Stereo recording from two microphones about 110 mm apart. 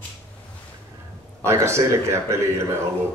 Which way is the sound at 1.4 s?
25° right (ahead or behind).